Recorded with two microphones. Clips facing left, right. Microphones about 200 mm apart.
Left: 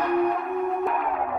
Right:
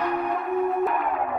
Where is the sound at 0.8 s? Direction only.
Centre (ahead or behind).